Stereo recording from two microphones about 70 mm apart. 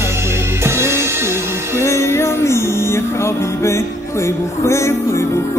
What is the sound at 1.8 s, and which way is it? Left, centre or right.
Music, left.